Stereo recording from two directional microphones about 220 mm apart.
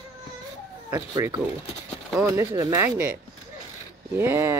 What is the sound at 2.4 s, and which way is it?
Speech, 15° right (ahead or behind).